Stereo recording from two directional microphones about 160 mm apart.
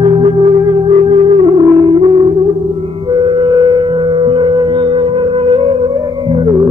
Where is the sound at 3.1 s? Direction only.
30° right (ahead or behind).